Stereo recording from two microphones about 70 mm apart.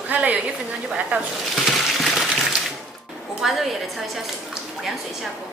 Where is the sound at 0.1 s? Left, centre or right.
Right.